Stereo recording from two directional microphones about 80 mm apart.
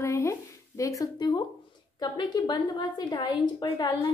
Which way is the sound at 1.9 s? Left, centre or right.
Left.